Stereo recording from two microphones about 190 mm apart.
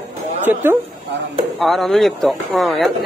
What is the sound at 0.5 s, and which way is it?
Speech, 10° right (ahead or behind).